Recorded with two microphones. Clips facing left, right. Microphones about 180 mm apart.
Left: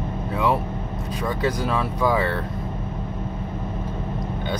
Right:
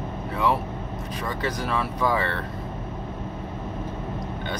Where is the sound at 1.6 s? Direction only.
10° left (ahead or behind).